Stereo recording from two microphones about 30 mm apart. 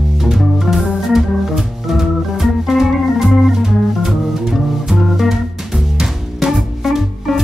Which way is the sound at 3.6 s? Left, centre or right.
Right.